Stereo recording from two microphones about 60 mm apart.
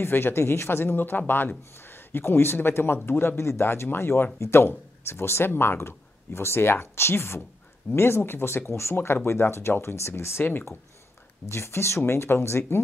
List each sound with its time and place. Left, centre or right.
0.0 s a man's voice: left
11.5 s speech: left